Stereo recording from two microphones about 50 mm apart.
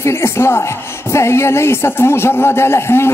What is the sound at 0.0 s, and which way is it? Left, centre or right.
A man's voice, left.